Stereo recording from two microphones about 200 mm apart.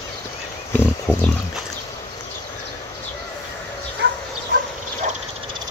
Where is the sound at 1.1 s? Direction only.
10° left (ahead or behind).